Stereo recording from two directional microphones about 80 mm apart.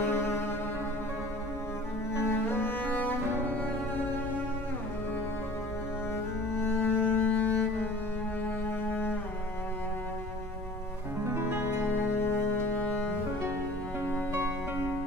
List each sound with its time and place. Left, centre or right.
0.0 s cello: left
2.1 s cello: left
6.6 s music: left
11.8 s music: left